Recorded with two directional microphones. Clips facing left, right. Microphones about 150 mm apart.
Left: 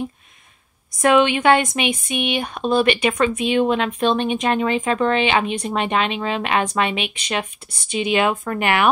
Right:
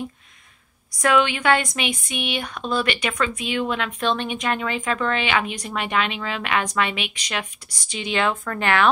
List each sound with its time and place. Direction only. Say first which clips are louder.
0.9 s speech: left 4 dB; 20° left (ahead or behind)
7.6 s speech: left 4 dB; 15° right (ahead or behind)
7.9 s speech: left 5 dB; 20° left (ahead or behind)